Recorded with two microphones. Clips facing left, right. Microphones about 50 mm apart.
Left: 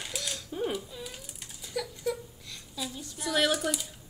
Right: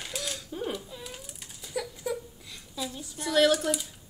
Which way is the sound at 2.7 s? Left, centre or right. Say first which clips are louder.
Right 2 dB; centre.